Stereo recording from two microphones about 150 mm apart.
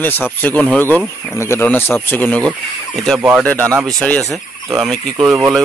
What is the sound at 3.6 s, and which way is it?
Speech, 20° right (ahead or behind).